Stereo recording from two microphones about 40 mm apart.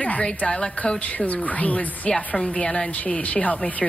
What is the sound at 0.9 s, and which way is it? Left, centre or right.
A woman's voice, left.